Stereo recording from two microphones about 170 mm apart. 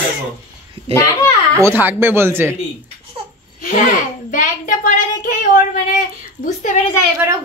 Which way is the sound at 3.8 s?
50° left (ahead or behind).